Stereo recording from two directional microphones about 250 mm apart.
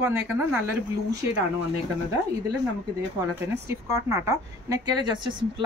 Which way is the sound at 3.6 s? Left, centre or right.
Centre.